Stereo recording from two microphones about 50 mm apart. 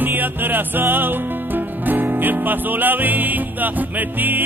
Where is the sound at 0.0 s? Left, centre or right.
Right.